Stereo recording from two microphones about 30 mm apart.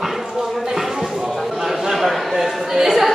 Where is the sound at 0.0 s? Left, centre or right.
Centre.